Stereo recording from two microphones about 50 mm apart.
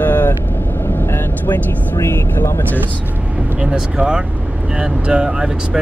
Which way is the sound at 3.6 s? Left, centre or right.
Centre.